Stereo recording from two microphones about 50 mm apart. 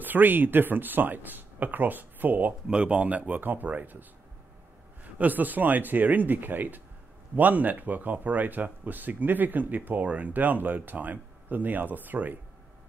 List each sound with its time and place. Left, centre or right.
0.0 s speech: right
5.0 s speech: right